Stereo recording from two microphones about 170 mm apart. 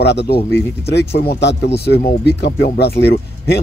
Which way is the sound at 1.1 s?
75° left (ahead or behind).